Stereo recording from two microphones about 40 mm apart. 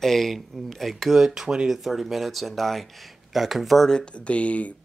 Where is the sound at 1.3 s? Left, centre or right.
Centre.